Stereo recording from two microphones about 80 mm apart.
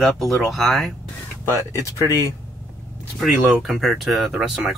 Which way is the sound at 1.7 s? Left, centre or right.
Right.